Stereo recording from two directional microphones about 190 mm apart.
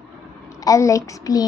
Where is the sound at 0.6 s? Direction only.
15° left (ahead or behind).